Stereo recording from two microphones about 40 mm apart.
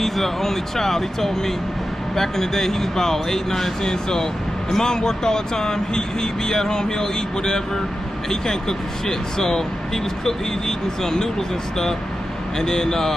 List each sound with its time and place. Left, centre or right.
0.0 s speech: centre
11.0 s speech: centre
12.5 s speech: centre